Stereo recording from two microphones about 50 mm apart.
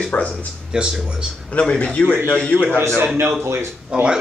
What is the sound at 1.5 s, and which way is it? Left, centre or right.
A man's voice, left.